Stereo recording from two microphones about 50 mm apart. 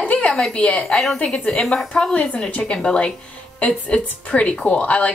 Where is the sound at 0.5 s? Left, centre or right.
Left.